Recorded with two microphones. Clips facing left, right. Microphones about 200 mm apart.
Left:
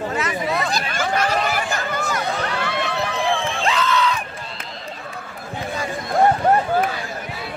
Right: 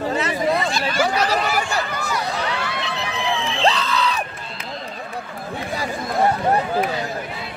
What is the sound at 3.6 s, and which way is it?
Crowd, 35° right (ahead or behind).